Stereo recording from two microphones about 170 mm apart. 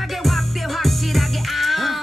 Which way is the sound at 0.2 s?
Centre (ahead or behind).